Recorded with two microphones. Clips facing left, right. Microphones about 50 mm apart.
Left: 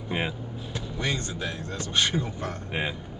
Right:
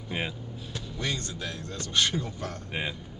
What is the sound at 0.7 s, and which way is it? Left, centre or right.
Speech, left.